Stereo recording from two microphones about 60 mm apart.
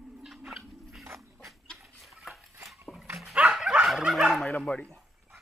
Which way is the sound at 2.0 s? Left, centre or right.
Centre.